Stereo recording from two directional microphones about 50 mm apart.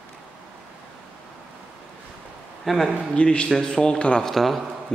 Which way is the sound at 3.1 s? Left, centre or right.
Left.